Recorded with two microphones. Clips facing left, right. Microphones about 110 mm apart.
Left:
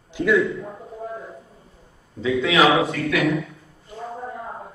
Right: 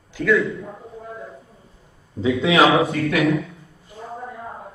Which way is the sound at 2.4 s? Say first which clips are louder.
Right 1 dB; 30° right (ahead or behind).